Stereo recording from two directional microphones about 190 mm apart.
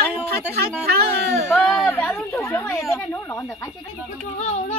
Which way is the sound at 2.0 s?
10° left (ahead or behind).